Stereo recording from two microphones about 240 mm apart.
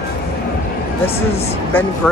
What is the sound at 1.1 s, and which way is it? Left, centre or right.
Speech, left.